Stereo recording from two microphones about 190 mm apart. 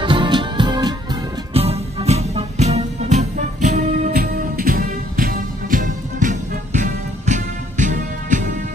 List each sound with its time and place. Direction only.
0.0 s music: 25° right (ahead or behind); by 8.5 s 40° right (ahead or behind)